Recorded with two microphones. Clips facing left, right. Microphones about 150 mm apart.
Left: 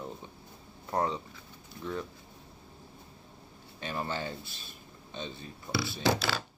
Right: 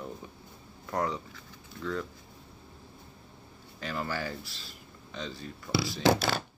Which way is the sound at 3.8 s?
25° left (ahead or behind).